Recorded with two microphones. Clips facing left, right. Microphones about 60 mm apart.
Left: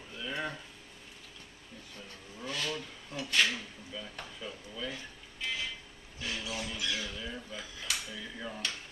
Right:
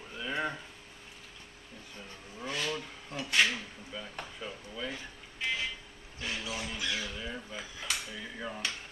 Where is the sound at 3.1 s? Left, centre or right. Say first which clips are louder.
Right 2 dB; right.